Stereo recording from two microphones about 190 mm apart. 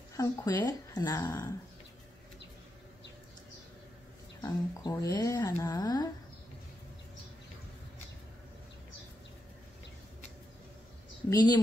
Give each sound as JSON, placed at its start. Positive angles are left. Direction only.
{"t": 0.1, "sound": "speech", "side_deg": 20}
{"t": 4.4, "sound": "speech", "side_deg": 20}
{"t": 11.2, "sound": "speech", "side_deg": 20}